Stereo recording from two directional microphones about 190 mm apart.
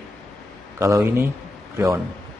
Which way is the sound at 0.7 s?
15° right (ahead or behind).